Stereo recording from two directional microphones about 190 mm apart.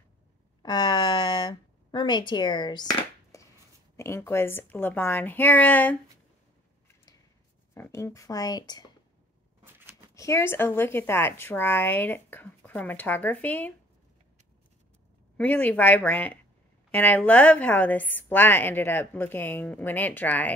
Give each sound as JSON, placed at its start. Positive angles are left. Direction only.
{"t": 0.6, "sound": "a sound", "side_deg": 20}
{"t": 3.9, "sound": "a woman's voice", "side_deg": 15}
{"t": 7.7, "sound": "a woman's voice", "side_deg": 15}
{"t": 9.7, "sound": "a sound", "side_deg": -10}
{"t": 10.1, "sound": "a woman's voice", "side_deg": 15}
{"t": 15.3, "sound": "a woman's voice", "side_deg": 5}